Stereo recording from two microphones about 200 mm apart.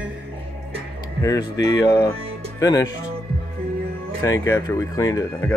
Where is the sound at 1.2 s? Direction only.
15° left (ahead or behind).